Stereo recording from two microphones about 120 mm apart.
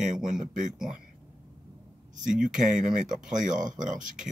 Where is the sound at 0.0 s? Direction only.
90° right.